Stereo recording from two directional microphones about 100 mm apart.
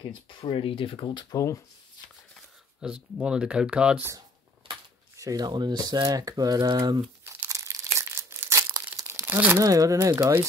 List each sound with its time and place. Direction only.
0.0 s speech: 55° left (ahead or behind)
1.3 s speech: 30° left (ahead or behind)
2.8 s speech: 10° right (ahead or behind)
5.1 s speech: 35° right (ahead or behind)
7.4 s crumpling: 30° right (ahead or behind)
9.6 s speech: 35° right (ahead or behind)